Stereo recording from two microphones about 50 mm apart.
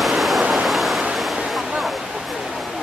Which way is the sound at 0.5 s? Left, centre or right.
Centre.